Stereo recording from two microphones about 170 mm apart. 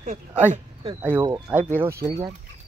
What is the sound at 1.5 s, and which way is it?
Speech, 5° right (ahead or behind).